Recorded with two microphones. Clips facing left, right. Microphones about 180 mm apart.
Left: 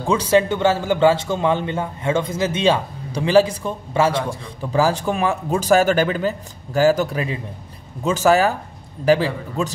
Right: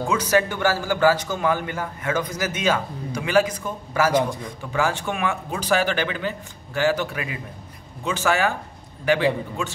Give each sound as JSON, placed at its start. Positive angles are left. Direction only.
{"t": 0.0, "sound": "a man's voice", "side_deg": 30}